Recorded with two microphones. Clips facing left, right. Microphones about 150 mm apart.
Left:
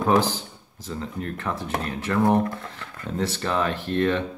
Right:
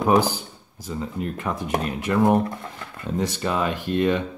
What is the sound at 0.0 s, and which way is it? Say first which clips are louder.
Speech: right 2 dB; 10° right (ahead or behind).